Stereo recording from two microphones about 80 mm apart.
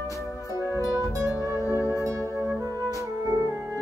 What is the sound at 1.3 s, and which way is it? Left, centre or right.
Music, left.